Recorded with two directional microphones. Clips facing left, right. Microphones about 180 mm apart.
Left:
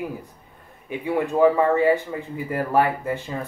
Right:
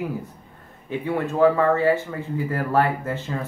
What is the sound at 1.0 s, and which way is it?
A man's voice, 15° left (ahead or behind).